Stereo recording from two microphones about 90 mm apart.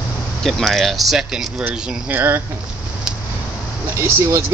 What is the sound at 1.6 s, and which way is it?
Speech, 20° right (ahead or behind).